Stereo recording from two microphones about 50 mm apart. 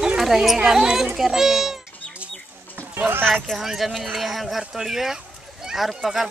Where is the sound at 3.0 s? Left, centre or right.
Right.